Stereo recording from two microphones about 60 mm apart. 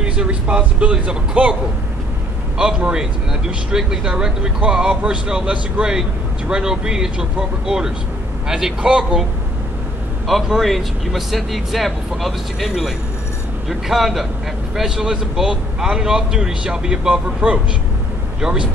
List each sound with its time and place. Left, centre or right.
0.0 s speech: centre
2.8 s speech: centre
10.2 s speech: centre